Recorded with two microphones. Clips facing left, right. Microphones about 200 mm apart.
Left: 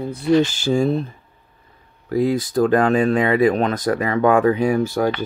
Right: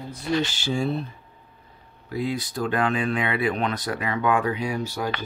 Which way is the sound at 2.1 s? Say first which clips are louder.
Left 9 dB; 45° left (ahead or behind).